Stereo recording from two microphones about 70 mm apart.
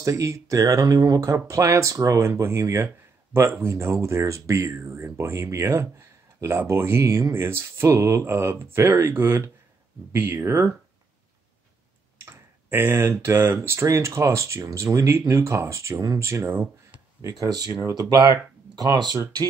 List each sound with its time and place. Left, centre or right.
0.0 s speech: right
12.3 s speech: right
13.7 s speech: right
17.2 s speech: right